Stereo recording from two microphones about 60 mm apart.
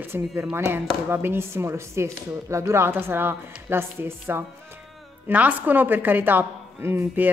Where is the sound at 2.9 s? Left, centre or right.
Right.